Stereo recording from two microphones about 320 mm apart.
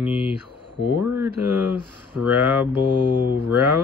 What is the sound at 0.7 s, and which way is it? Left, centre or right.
Speech, left.